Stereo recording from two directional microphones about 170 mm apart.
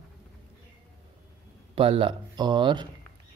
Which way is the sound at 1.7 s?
30° right (ahead or behind).